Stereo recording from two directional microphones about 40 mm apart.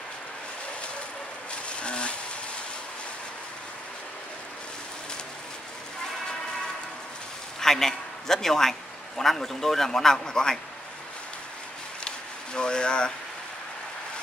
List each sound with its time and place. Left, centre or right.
1.7 s a sound: left
7.6 s a man's voice: centre
12.5 s speech: left